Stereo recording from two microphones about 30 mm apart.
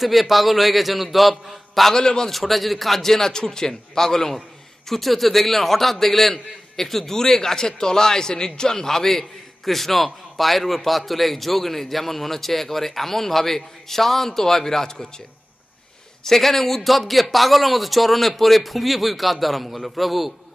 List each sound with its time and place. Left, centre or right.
0.0 s a man's voice: centre
2.0 s a man's voice: left
2.3 s a man's voice: centre
16.3 s a man's voice: centre